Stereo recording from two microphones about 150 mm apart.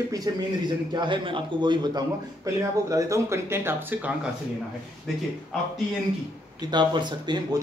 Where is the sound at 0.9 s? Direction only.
30° right (ahead or behind); by 4.1 s 15° right (ahead or behind).